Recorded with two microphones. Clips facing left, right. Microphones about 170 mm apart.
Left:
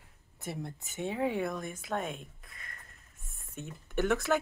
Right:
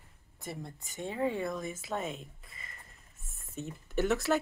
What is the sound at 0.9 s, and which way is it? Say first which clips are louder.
Speech: left 3 dB; 70° left (ahead or behind).